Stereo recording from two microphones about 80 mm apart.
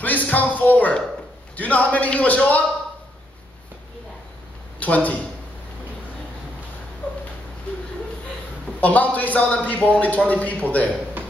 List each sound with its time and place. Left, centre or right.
0.0 s a man's voice: left
4.7 s a man's voice: centre
8.8 s a man's voice: centre